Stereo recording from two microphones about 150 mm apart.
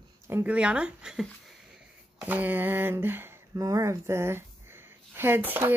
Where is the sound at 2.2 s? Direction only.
10° right (ahead or behind).